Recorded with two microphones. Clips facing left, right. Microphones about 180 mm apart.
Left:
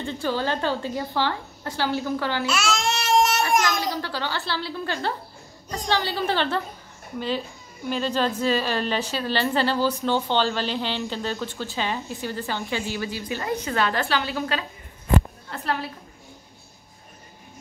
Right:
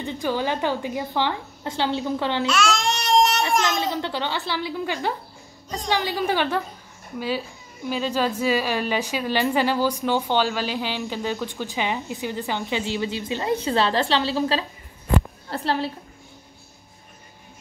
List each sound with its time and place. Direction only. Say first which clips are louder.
0.0 s a woman's voice: right 1 dB; 15° right (ahead or behind)
2.4 s babbling: right 2 dB; 5° left (ahead or behind)
3.6 s a woman's voice: right 2 dB; 25° right (ahead or behind)